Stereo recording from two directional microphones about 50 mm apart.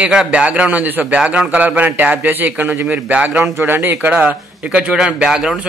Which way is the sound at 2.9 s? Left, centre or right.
Right.